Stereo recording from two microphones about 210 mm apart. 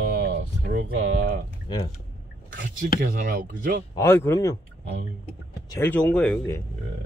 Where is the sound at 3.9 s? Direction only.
15° left (ahead or behind).